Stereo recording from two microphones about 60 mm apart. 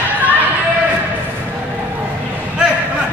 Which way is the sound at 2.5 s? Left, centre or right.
Centre.